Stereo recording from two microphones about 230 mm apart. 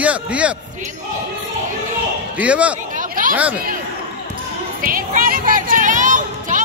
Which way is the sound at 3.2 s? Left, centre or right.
Right.